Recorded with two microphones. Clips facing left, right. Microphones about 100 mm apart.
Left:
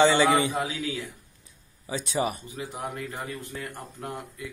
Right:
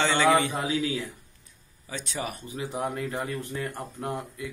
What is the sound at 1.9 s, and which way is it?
Speech, 10° left (ahead or behind).